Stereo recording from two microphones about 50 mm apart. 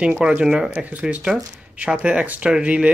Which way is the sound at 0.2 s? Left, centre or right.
Centre.